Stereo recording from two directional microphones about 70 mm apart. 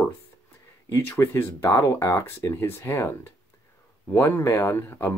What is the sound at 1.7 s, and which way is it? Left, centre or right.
Speech, left.